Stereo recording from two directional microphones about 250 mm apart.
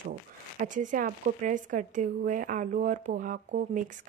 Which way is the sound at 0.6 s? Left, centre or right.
Right.